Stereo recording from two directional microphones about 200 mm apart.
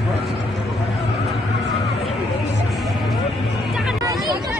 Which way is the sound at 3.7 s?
Centre (ahead or behind).